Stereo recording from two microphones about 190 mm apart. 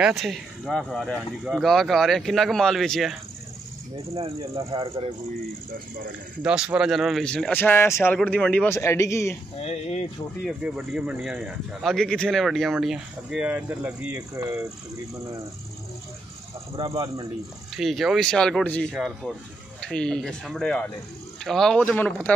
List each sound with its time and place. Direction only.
0.0 s speech: centre (ahead or behind)
4.7 s a man's voice: 25° right (ahead or behind)
6.4 s speech: 5° right (ahead or behind); by 9.4 s 15° left (ahead or behind)
9.6 s speech: 35° left (ahead or behind)
10.4 s speech: centre (ahead or behind)
14.3 s speech: 15° right (ahead or behind)
16.9 s a man's voice: 20° right (ahead or behind)
17.7 s speech: centre (ahead or behind)